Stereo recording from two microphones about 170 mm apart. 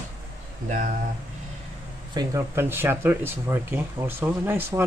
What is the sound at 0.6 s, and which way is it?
Speech, 50° right (ahead or behind).